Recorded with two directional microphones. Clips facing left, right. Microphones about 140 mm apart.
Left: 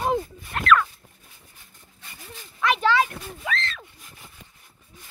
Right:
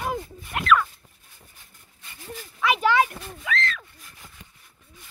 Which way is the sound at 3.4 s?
30° left (ahead or behind).